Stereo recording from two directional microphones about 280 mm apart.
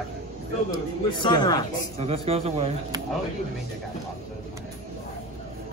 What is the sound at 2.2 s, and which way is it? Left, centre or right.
Speech, right.